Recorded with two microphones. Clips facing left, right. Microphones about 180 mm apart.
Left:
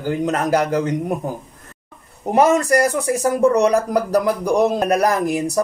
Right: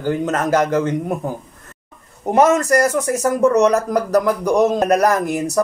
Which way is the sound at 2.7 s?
35° left (ahead or behind).